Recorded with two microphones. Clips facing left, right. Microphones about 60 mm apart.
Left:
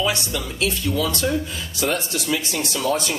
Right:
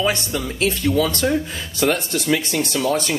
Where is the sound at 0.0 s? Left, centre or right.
Right.